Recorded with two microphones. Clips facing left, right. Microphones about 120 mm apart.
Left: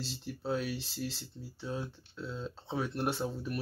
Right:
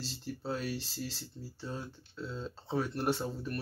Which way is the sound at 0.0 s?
Centre (ahead or behind).